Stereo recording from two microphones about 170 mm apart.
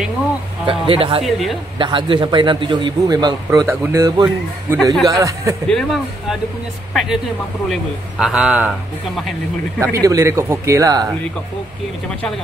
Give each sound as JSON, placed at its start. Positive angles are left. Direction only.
{"t": 0.7, "sound": "speech", "side_deg": -30}
{"t": 1.2, "sound": "speech", "side_deg": 0}
{"t": 1.8, "sound": "a man's voice", "side_deg": -30}
{"t": 3.4, "sound": "a man's voice", "side_deg": -15}
{"t": 5.7, "sound": "speech", "side_deg": 0}
{"t": 9.8, "sound": "speech", "side_deg": -20}